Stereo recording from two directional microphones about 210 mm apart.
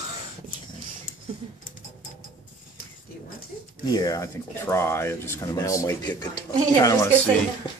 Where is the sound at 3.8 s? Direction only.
20° left (ahead or behind).